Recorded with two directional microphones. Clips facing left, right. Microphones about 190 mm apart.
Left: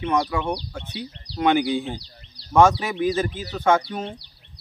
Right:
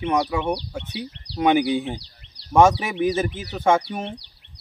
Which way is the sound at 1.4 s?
10° right (ahead or behind).